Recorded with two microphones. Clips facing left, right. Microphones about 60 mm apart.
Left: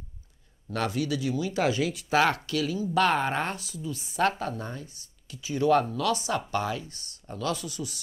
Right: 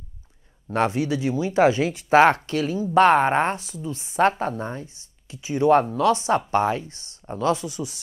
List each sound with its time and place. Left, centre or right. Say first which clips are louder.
0.7 s speech: right 6 dB; right